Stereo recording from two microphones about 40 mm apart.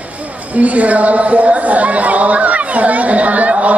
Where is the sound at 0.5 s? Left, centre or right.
Right.